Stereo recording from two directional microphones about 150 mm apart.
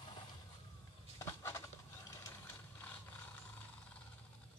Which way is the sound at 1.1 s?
20° left (ahead or behind).